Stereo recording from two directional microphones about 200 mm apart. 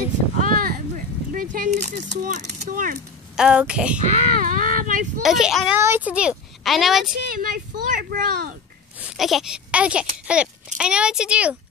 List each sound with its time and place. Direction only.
0.4 s a sound: 45° right (ahead or behind)
1.3 s speech: 40° right (ahead or behind)
3.3 s speech: 5° right (ahead or behind)
4.0 s speech: 45° right (ahead or behind)
5.2 s speech: centre (ahead or behind)
7.3 s speech: 45° right (ahead or behind)
9.0 s speech: centre (ahead or behind)